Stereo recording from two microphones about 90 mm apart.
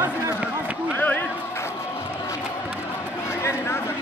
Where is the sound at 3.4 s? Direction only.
30° left (ahead or behind).